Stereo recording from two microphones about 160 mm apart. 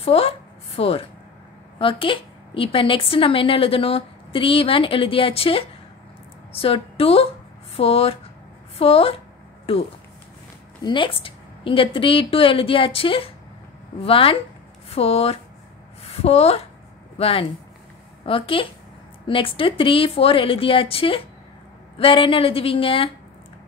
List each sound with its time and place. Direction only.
0.0 s a sound: 40° left (ahead or behind)
1.8 s a woman's voice: 35° left (ahead or behind)
10.8 s a woman's voice: 30° left (ahead or behind)